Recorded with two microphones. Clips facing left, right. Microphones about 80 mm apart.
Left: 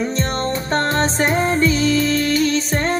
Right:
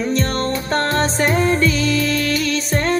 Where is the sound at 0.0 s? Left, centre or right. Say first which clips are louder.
Right 1 dB; left.